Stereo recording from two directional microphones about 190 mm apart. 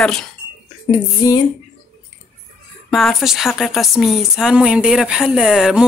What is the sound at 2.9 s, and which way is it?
Speech, centre (ahead or behind).